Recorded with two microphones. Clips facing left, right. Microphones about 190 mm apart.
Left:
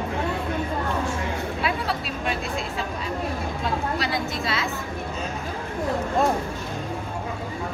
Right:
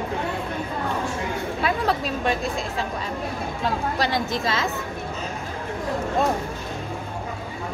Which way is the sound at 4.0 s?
40° right (ahead or behind).